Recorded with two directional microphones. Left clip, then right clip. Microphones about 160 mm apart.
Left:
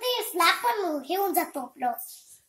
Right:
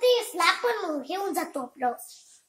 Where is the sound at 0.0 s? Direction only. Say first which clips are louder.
Right 2 dB; 20° right (ahead or behind).